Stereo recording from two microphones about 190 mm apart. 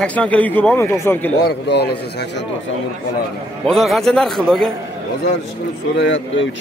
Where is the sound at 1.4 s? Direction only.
60° left (ahead or behind).